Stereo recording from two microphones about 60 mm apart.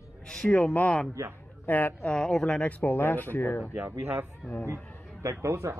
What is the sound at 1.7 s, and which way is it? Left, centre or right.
Speech, left.